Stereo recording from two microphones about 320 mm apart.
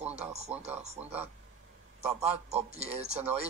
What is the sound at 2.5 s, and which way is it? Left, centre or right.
Speech, centre.